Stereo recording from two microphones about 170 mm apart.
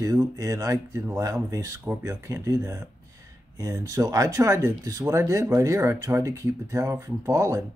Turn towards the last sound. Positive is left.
turn(degrees=-15)  # may be behind; listen again after turning